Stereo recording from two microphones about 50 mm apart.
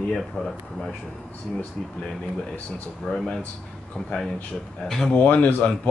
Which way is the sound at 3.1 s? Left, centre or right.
Centre.